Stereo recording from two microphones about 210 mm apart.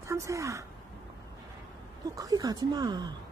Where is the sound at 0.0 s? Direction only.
15° right (ahead or behind).